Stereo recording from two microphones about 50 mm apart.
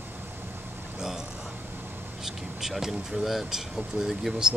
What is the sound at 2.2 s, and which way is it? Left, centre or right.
Speech, centre.